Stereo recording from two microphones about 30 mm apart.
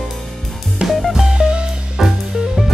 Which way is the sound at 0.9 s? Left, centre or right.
Centre.